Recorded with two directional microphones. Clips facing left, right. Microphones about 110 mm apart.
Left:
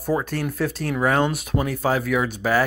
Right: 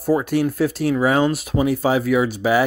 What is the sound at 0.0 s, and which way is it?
Speech, 10° right (ahead or behind).